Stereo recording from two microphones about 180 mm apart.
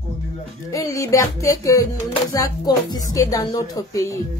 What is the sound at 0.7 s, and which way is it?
A woman's voice, 15° left (ahead or behind).